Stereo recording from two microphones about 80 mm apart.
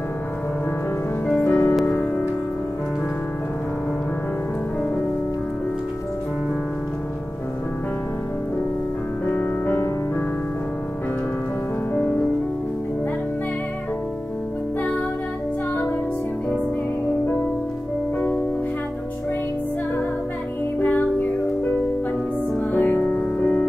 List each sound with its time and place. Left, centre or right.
1.2 s music: centre
9.3 s music: left
20.8 s music: left
22.7 s music: left